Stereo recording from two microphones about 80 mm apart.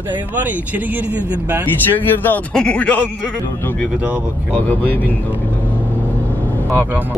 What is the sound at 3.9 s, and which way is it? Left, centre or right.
Speech, right.